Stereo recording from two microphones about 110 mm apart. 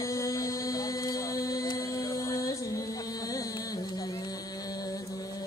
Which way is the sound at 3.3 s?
35° left (ahead or behind).